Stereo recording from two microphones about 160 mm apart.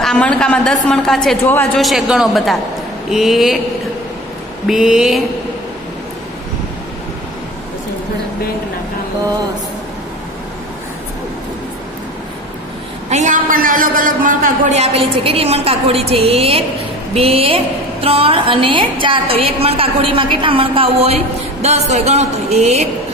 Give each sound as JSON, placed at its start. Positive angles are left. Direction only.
{"t": 0.0, "sound": "a woman's voice", "side_deg": 5}
{"t": 4.6, "sound": "a woman's voice", "side_deg": -5}
{"t": 13.1, "sound": "a man's voice", "side_deg": -55}